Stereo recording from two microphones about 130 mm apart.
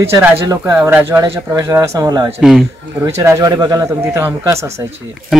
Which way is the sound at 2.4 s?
Centre (ahead or behind).